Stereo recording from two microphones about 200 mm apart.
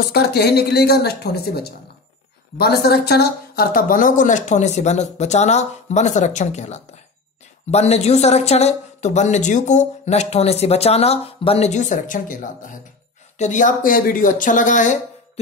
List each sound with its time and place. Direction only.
0.1 s speech: 55° left (ahead or behind)